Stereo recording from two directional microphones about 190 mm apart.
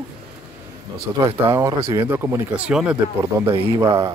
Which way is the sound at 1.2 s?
15° right (ahead or behind).